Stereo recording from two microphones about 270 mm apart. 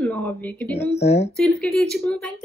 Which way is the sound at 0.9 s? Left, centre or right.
Left.